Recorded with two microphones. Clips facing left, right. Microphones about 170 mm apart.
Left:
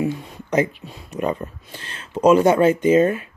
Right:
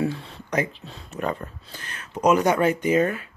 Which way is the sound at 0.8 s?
15° left (ahead or behind).